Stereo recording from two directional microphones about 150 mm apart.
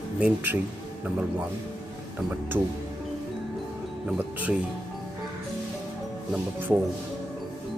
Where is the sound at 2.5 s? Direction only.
15° right (ahead or behind).